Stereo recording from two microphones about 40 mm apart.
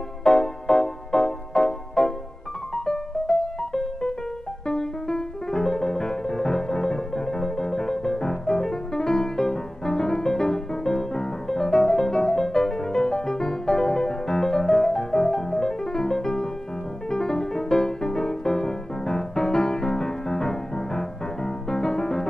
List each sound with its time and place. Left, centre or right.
0.2 s music: centre